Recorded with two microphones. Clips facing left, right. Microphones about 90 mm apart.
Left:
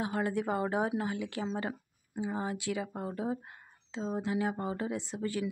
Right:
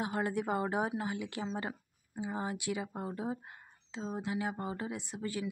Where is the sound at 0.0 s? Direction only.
25° right (ahead or behind).